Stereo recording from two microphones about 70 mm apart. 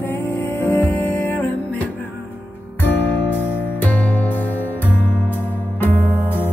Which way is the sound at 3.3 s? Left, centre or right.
Left.